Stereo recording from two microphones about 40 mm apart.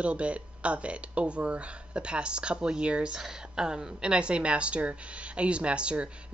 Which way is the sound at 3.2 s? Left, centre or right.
Centre.